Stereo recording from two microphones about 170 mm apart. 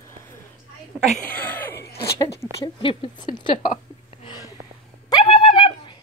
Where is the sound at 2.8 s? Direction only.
30° left (ahead or behind).